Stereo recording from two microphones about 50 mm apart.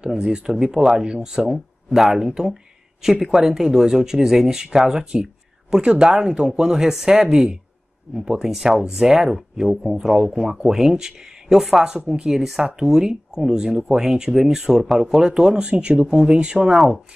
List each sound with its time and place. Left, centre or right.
0.0 s speech: centre
8.3 s speech: centre